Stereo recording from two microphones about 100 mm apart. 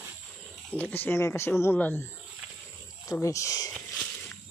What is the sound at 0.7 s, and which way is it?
Speech, 15° left (ahead or behind).